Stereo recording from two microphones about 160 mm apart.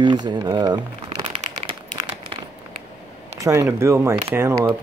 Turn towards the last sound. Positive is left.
turn(degrees=-20)  # may be behind; listen again after turning